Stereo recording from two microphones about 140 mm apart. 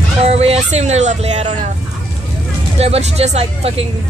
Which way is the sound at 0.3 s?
50° right (ahead or behind).